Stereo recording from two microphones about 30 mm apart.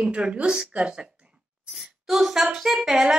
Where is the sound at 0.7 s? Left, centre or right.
Right.